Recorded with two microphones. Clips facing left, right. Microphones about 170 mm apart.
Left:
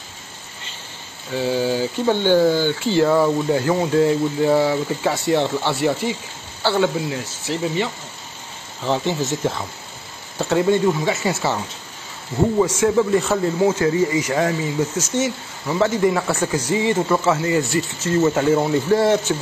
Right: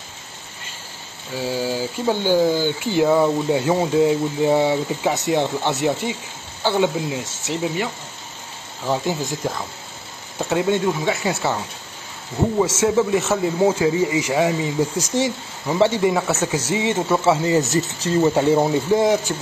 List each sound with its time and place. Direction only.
1.3 s speech: 5° right (ahead or behind)
10.5 s speech: 5° right (ahead or behind)
12.8 s speech: 5° right (ahead or behind)
15.0 s speech: 35° right (ahead or behind)
15.6 s speech: 20° right (ahead or behind)
16.3 s speech: 5° right (ahead or behind)
16.6 s speech: 20° right (ahead or behind)
16.9 s speech: 10° right (ahead or behind)